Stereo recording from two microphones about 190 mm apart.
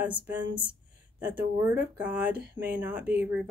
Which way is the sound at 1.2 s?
10° right (ahead or behind).